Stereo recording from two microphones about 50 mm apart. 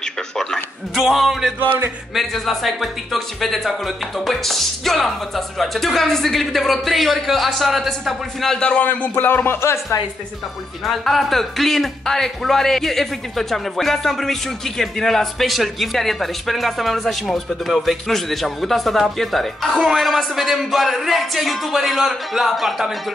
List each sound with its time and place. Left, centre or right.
0.9 s speech: centre
8.5 s a man's voice: left
9.2 s speech: left
9.6 s speech: left
10.9 s speech: centre